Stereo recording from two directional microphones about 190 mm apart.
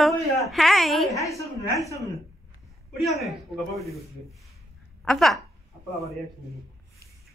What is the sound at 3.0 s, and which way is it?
Speech, centre (ahead or behind).